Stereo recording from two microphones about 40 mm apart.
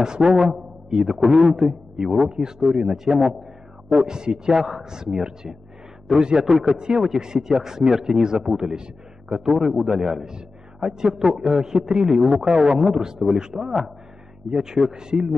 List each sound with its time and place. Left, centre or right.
0.0 s a man's voice: centre